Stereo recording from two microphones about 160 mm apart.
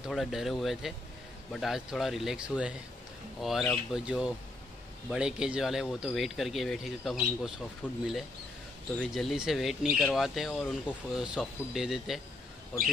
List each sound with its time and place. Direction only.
0.1 s speech: centre (ahead or behind)
8.9 s speech: 5° left (ahead or behind)